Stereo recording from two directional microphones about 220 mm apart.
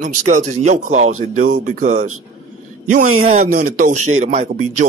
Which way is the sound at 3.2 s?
30° right (ahead or behind).